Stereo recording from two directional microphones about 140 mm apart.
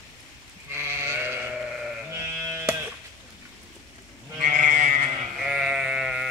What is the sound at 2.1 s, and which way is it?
Sheep, 20° right (ahead or behind).